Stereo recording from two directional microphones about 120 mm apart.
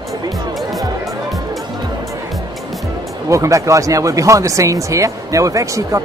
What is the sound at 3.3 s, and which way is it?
Speech, 25° right (ahead or behind).